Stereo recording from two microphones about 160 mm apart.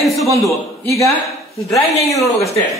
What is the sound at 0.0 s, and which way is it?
Speech, centre (ahead or behind).